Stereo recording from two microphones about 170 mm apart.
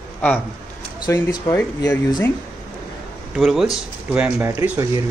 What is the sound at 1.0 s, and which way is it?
Speech, 20° left (ahead or behind).